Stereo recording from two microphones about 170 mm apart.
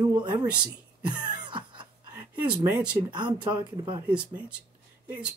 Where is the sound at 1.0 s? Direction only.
25° right (ahead or behind).